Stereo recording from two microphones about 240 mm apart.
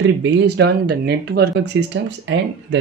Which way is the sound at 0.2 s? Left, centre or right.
Right.